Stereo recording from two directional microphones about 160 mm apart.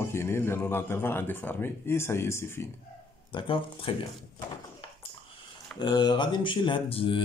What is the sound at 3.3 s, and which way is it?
Speech, 30° left (ahead or behind).